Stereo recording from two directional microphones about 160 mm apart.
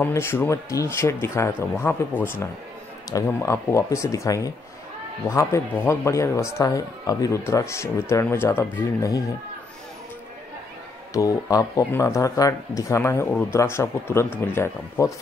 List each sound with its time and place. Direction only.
0.0 s speech: 15° left (ahead or behind)
11.1 s speech: 20° left (ahead or behind)